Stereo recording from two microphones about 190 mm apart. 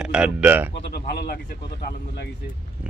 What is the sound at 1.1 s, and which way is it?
Speech, 60° left (ahead or behind).